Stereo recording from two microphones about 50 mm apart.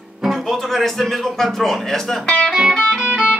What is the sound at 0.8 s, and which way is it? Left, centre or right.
Speech, centre.